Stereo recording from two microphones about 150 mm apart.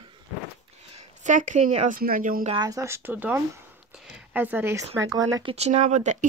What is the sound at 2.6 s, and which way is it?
Speech, 20° right (ahead or behind).